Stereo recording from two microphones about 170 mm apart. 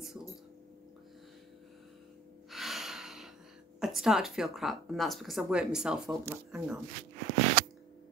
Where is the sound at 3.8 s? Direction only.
5° right (ahead or behind).